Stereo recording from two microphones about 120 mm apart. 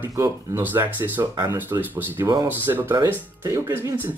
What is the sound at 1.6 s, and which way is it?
Speech, 15° right (ahead or behind).